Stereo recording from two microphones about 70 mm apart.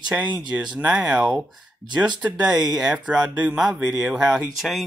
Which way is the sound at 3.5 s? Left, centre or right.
Centre.